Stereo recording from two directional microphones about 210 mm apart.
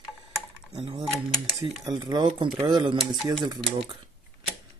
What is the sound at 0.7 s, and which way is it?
Speech, 20° right (ahead or behind).